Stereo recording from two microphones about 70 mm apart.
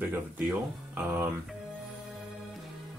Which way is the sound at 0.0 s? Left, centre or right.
Right.